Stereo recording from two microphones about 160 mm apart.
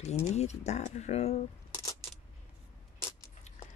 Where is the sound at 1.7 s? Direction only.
15° left (ahead or behind).